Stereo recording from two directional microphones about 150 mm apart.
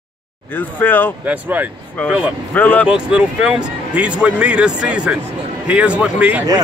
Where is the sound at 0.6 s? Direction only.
10° left (ahead or behind).